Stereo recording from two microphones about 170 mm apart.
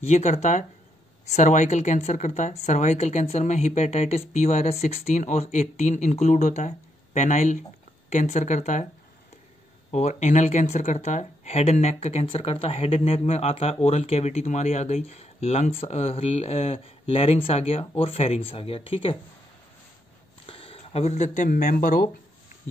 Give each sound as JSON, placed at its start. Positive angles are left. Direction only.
{"t": 0.0, "sound": "speech", "side_deg": 40}
{"t": 9.8, "sound": "speech", "side_deg": 40}
{"t": 20.4, "sound": "speech", "side_deg": 35}